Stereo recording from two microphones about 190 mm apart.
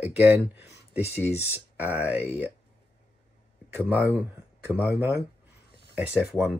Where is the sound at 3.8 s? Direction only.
10° right (ahead or behind).